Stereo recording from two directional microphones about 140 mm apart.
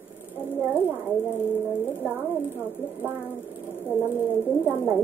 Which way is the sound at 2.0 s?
15° right (ahead or behind).